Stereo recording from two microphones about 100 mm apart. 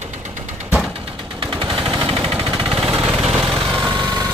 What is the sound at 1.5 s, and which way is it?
Machine gun, 55° right (ahead or behind).